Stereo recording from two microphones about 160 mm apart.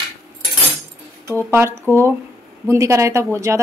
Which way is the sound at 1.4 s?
15° right (ahead or behind).